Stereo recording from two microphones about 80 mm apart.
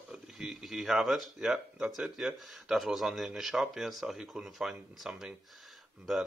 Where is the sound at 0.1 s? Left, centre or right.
Centre.